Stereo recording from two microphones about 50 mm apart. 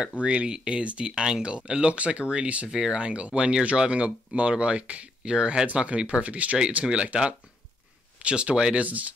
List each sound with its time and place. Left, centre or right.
0.2 s speech: right
8.8 s speech: right